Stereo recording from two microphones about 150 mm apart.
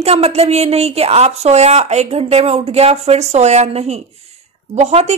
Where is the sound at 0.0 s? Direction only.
45° right (ahead or behind).